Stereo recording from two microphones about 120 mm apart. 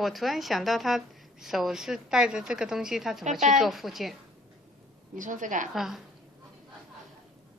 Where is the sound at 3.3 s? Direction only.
85° right.